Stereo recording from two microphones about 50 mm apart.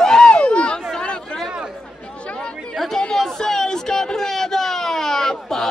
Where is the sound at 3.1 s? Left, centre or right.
Centre.